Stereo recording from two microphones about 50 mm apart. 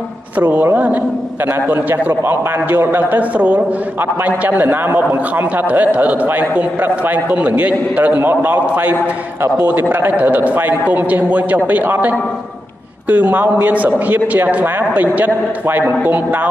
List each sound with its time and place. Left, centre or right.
0.4 s a man's voice: right
3.0 s a man's voice: right
4.6 s a man's voice: right
5.3 s a man's voice: right
8.2 s a man's voice: right